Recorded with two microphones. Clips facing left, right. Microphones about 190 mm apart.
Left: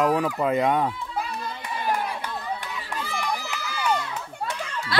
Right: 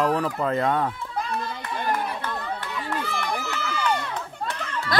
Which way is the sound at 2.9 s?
55° right (ahead or behind).